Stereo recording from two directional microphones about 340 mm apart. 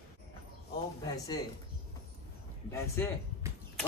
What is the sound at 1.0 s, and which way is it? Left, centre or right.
Speech, centre.